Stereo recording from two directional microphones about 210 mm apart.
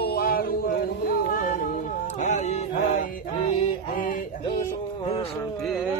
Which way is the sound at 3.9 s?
40° left (ahead or behind).